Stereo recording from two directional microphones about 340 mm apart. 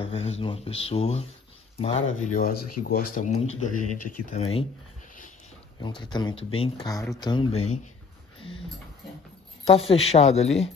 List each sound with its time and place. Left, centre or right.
0.0 s speech: centre
2.5 s speech: left
3.2 s speech: centre
3.7 s speech: left
4.4 s speech: centre
5.8 s speech: centre
9.7 s speech: centre